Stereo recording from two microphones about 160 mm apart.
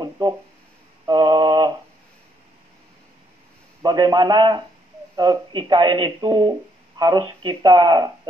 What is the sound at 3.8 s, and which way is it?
Speech, 25° right (ahead or behind).